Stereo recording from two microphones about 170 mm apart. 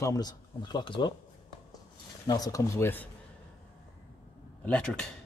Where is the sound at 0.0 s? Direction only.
20° left (ahead or behind).